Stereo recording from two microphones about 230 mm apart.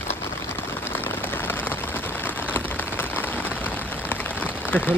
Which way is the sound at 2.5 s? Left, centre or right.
Centre.